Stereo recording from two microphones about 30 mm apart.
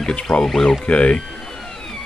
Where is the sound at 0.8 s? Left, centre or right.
Left.